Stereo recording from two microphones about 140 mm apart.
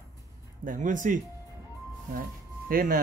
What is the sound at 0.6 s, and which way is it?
Speech, 70° right (ahead or behind).